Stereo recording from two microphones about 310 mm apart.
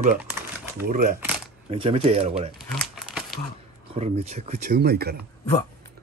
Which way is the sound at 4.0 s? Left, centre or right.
Right.